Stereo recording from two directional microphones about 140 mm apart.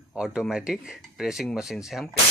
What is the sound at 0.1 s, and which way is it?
Speech, 5° right (ahead or behind).